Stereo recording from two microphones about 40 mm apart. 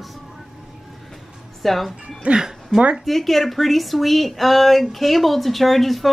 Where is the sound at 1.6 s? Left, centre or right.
Centre.